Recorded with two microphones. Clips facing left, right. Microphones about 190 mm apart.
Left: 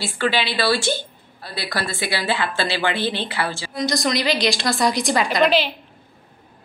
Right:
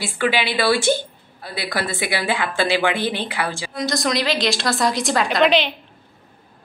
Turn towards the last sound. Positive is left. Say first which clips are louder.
# right 1 dB
turn(degrees=0)  # may be behind; listen again after turning